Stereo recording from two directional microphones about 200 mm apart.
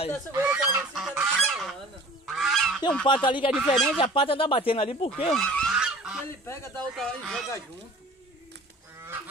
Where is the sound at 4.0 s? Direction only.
25° left (ahead or behind).